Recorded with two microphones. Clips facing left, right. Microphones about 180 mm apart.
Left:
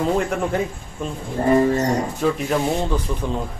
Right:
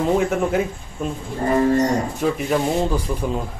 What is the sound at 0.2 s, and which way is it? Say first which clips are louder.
Speech: right 2 dB; 5° right (ahead or behind).